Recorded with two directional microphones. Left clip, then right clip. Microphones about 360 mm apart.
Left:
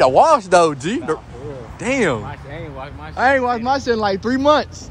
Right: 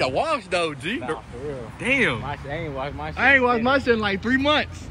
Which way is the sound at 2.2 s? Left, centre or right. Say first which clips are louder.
Right 2 dB; right.